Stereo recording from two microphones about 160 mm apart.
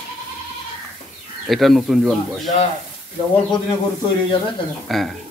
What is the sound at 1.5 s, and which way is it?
Speech, centre (ahead or behind).